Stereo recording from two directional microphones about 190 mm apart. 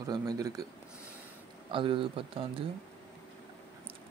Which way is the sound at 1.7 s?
25° right (ahead or behind).